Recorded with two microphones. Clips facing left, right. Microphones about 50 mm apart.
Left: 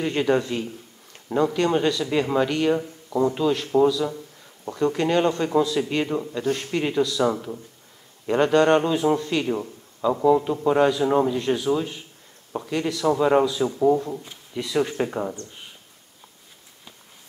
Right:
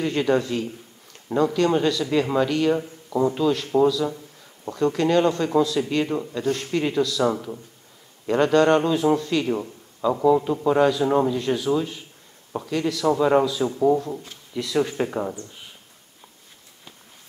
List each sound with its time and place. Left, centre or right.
0.0 s speech: centre
2.7 s speech: centre
3.3 s speech: centre
6.0 s a man's voice: centre
6.4 s speech: centre
8.3 s a man's voice: centre